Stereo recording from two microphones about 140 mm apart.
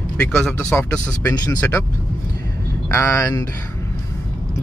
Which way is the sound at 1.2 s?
25° left (ahead or behind).